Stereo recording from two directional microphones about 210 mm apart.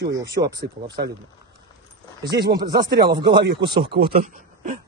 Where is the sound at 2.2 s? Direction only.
50° right (ahead or behind).